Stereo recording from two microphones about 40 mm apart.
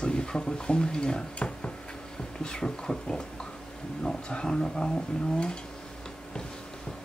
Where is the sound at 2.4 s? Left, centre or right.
Left.